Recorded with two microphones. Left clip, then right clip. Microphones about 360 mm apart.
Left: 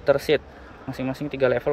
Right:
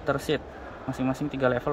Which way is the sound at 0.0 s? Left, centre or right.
Centre.